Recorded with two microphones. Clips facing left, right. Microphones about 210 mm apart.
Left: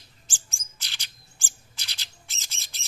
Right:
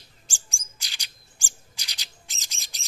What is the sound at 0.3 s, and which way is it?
Bird, 15° right (ahead or behind).